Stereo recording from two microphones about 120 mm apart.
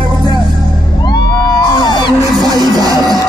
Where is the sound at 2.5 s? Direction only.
35° right (ahead or behind).